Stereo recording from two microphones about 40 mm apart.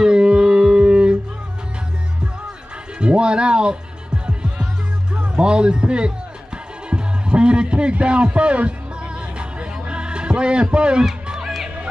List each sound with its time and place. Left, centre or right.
0.0 s a sound: right
3.0 s music: right
5.1 s speech: right
6.9 s music: right
11.4 s music: centre